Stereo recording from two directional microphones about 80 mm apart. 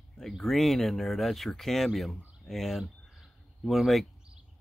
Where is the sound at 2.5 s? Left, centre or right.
Centre.